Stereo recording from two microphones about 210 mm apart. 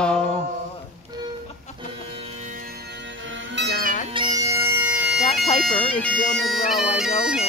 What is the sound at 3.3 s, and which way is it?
Music, 60° right (ahead or behind).